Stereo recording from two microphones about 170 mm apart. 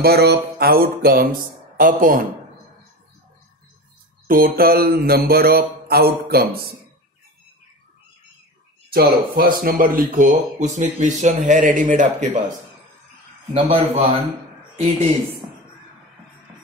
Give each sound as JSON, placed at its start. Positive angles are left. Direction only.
{"t": 0.0, "sound": "mantra", "side_deg": -70}
{"t": 1.8, "sound": "speech", "side_deg": -55}
{"t": 4.3, "sound": "mantra", "side_deg": -60}
{"t": 8.9, "sound": "speech", "side_deg": -60}
{"t": 13.5, "sound": "a man's voice", "side_deg": -35}